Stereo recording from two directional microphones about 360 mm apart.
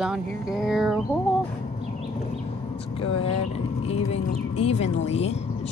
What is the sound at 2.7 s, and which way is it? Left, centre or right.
Speech, centre.